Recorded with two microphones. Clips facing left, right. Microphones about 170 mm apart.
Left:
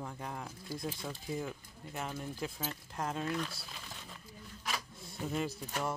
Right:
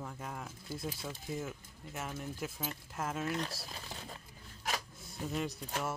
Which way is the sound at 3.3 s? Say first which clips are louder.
Even; 40° right (ahead or behind).